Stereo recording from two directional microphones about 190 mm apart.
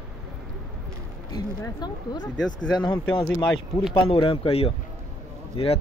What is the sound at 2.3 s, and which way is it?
Speech, 80° left.